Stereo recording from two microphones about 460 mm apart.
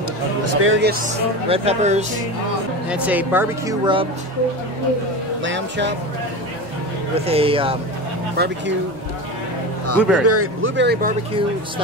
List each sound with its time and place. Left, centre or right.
0.5 s speech: right
1.5 s speech: centre
2.9 s speech: centre
5.4 s speech: right
7.2 s speech: centre
9.9 s speech: centre
10.2 s speech: right